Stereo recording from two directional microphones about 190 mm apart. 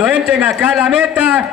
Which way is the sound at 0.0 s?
5° right (ahead or behind).